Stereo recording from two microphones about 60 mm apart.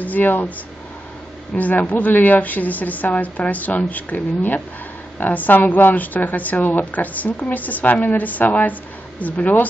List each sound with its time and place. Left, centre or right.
0.0 s speech: left
1.5 s a woman's voice: left